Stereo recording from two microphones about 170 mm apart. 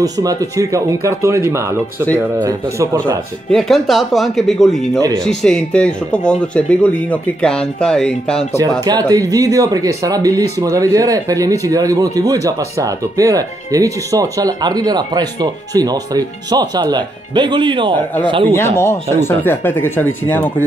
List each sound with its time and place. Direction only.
0.0 s speech: 20° right (ahead or behind)
3.5 s speech: centre (ahead or behind)
8.5 s speech: 20° right (ahead or behind)
18.5 s speech: 15° left (ahead or behind)